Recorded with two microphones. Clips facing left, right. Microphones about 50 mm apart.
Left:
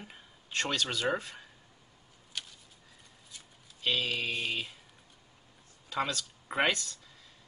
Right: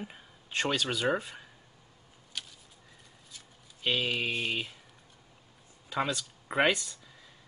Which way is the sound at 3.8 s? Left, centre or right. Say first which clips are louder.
Right 2 dB; centre.